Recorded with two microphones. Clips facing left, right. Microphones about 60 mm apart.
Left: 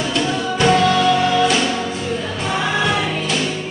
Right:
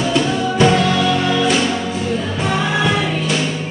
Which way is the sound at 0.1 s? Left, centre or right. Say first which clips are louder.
Right 3 dB; centre.